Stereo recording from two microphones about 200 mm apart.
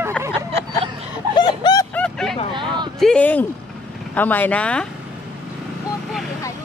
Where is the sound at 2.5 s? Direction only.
25° right (ahead or behind).